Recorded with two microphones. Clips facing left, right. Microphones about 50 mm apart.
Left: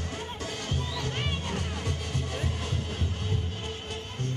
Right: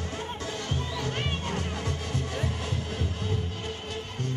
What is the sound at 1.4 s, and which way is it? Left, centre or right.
Music, right.